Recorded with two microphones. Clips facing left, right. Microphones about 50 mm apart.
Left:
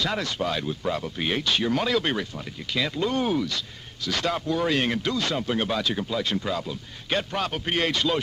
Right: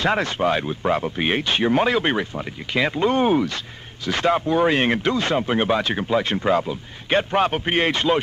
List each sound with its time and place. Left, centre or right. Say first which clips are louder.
0.0 s speech: right 7 dB; right